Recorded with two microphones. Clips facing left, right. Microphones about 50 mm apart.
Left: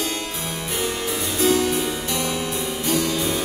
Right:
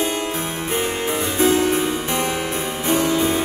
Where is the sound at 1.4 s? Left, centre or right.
Right.